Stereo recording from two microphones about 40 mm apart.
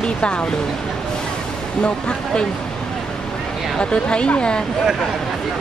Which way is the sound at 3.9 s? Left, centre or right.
Left.